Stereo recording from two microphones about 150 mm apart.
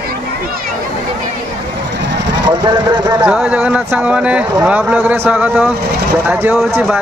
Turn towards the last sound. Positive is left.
turn(degrees=-10)  # may be behind; listen again after turning